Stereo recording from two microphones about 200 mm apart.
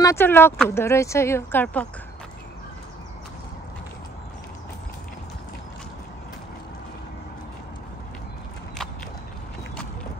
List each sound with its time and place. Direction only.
0.0 s speech: 10° left (ahead or behind)